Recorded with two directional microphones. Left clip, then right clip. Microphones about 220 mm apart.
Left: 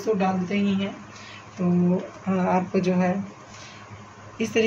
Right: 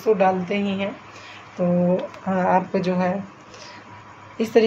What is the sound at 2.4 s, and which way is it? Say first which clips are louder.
Speech: right 4 dB; 25° right (ahead or behind).